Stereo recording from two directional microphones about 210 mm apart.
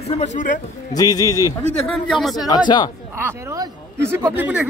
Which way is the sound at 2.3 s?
20° left (ahead or behind).